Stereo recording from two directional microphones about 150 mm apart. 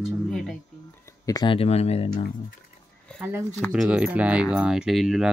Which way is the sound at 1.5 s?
40° left (ahead or behind).